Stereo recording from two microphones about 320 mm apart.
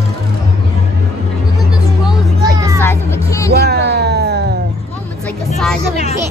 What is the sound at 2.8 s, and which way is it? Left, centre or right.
Vehicle, centre.